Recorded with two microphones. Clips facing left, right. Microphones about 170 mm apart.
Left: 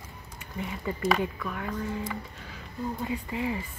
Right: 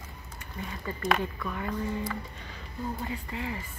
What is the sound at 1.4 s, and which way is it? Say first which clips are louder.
Speech: even; centre (ahead or behind).